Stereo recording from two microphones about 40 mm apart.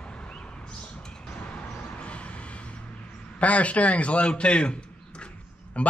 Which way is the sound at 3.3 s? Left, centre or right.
Left.